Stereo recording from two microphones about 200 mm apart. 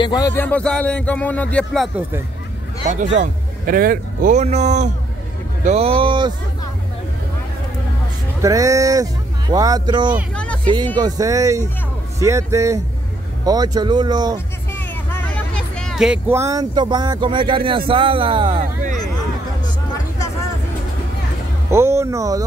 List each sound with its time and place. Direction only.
0.0 s speech: 20° left (ahead or behind); by 2.0 s centre (ahead or behind)
2.9 s a man's voice: 35° right (ahead or behind)
8.4 s speech: 15° right (ahead or behind)
10.3 s a sound: 5° left (ahead or behind)
11.0 s speech: 20° right (ahead or behind)
14.7 s speech: 10° left (ahead or behind); by 18.6 s 25° right (ahead or behind)
21.6 s speech: 15° right (ahead or behind)